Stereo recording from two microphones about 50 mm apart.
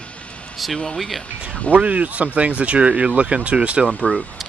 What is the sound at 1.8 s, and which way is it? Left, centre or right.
Speech, right.